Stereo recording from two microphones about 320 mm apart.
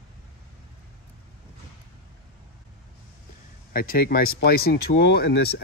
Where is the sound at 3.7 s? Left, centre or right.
Left.